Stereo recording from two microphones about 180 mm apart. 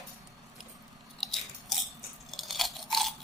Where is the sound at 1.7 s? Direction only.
Centre (ahead or behind).